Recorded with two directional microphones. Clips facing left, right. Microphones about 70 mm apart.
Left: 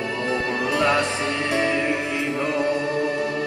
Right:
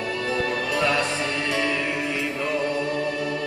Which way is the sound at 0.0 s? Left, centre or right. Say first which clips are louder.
Left 1 dB; left.